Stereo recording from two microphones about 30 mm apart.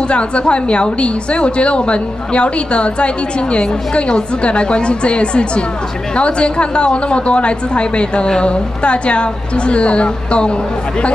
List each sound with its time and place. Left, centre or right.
0.1 s a woman's voice: left